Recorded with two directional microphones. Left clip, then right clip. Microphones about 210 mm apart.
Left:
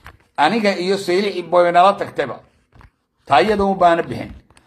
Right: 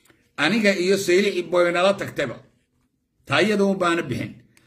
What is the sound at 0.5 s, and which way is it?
Speech, 15° right (ahead or behind).